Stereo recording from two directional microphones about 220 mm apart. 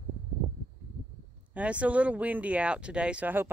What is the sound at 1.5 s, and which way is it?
Speech, 5° right (ahead or behind).